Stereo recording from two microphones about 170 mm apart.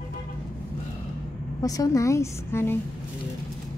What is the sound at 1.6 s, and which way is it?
A woman's voice, 20° left (ahead or behind).